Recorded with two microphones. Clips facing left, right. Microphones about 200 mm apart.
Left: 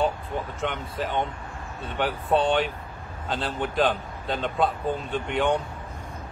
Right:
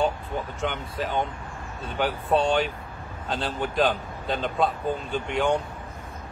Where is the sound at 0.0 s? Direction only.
Centre (ahead or behind).